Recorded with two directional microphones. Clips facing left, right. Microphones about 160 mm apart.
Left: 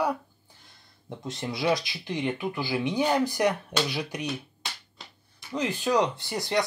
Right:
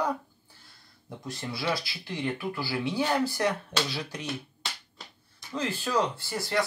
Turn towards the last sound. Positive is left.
turn(degrees=20)  # may be behind; listen again after turning